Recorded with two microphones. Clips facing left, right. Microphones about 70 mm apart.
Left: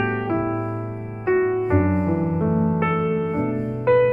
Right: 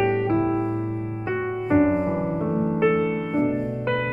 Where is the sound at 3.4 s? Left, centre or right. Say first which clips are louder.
Right 1 dB; left.